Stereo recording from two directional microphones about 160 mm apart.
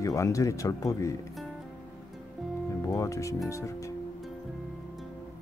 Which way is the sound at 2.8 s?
20° left (ahead or behind).